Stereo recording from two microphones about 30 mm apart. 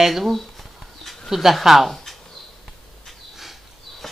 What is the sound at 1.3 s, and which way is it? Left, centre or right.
Speech, centre.